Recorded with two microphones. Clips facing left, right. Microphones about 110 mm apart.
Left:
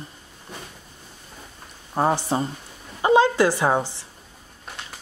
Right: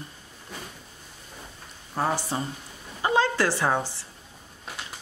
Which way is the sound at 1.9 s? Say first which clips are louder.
Left 5 dB; 25° left (ahead or behind).